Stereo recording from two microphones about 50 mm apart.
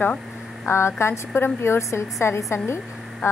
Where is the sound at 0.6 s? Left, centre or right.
Left.